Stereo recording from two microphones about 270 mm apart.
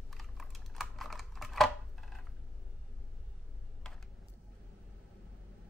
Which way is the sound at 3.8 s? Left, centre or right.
Centre.